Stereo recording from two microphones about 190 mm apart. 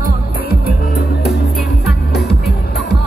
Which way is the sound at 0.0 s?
50° left (ahead or behind).